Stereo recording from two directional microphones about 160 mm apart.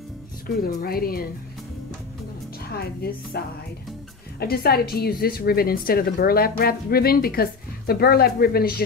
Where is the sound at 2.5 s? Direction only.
75° left (ahead or behind).